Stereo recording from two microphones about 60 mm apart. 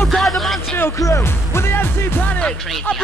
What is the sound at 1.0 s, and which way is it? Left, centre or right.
Speech, left.